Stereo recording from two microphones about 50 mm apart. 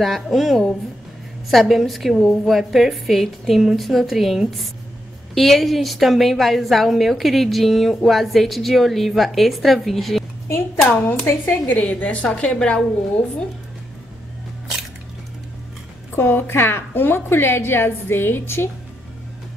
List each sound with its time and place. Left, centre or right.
0.0 s a woman's voice: centre
11.1 s a woman's voice: left
16.2 s a woman's voice: left